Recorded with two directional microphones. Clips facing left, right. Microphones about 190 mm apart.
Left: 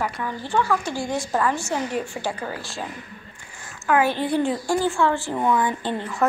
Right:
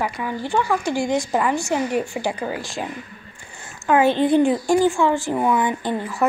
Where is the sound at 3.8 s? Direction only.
25° right (ahead or behind).